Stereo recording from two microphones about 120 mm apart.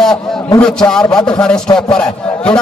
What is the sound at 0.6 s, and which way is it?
A man's voice, 5° left (ahead or behind).